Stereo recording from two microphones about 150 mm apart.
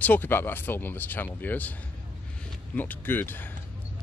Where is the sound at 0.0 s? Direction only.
10° left (ahead or behind).